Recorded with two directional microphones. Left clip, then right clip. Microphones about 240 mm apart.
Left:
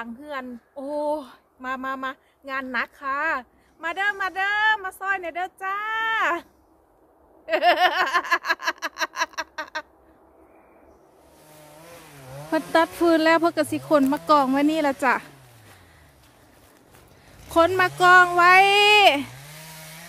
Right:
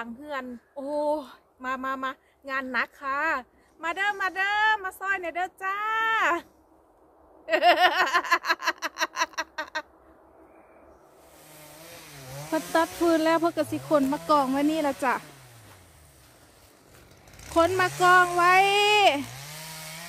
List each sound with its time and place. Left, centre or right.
0.0 s speech: centre
7.4 s speech: centre
12.4 s speech: left
17.5 s speech: centre
19.2 s chainsaw: centre